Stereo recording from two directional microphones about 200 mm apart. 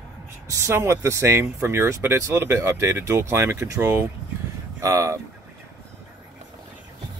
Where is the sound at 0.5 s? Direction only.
15° right (ahead or behind).